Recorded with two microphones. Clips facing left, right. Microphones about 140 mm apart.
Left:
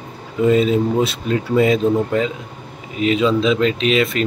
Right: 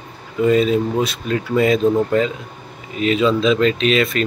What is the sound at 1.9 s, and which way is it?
Speech, 10° left (ahead or behind).